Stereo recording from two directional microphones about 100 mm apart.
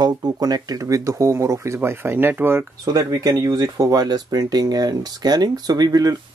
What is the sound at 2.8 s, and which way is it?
Speech, 35° right (ahead or behind).